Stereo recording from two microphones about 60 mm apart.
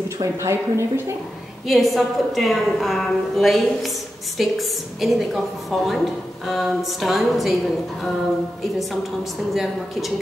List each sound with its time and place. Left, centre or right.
0.2 s speech: right
1.7 s a woman's voice: centre
9.5 s a woman's voice: centre